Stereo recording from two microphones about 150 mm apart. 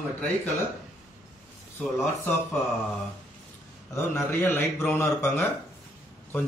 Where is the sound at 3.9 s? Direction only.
15° left (ahead or behind).